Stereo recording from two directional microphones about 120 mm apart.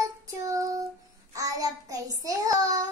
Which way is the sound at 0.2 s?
30° right (ahead or behind).